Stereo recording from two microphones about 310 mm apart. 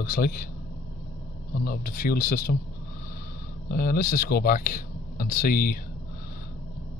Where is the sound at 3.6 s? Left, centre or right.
Left.